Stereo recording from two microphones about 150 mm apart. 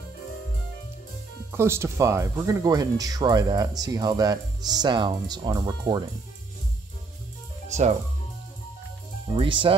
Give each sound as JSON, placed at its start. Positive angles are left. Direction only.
{"t": 1.5, "sound": "speech", "side_deg": -15}
{"t": 7.6, "sound": "music", "side_deg": -50}
{"t": 9.3, "sound": "speech", "side_deg": -35}